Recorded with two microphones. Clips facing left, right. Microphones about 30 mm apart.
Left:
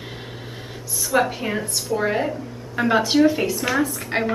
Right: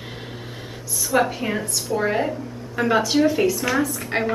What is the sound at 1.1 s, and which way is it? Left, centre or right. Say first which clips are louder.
A woman's voice: even; centre.